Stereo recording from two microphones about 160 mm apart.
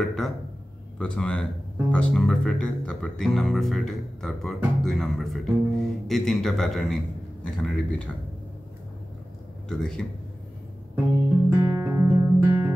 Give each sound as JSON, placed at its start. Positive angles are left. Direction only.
{"t": 0.0, "sound": "speech", "side_deg": 0}
{"t": 9.7, "sound": "speech", "side_deg": 5}
{"t": 11.5, "sound": "music", "side_deg": -15}